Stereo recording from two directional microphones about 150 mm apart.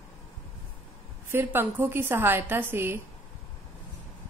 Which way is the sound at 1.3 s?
15° right (ahead or behind).